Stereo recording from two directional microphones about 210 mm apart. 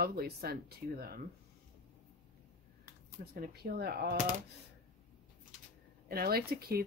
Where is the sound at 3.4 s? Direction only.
50° right (ahead or behind).